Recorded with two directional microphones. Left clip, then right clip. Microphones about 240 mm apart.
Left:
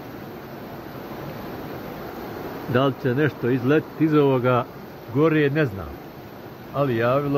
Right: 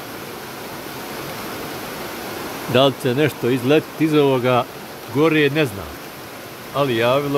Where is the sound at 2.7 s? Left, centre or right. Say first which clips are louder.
Right 5 dB; centre.